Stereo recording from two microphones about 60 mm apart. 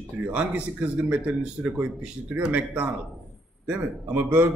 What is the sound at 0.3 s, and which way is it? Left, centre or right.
A man's voice, right.